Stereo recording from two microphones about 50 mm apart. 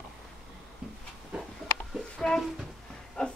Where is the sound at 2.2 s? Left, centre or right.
Centre.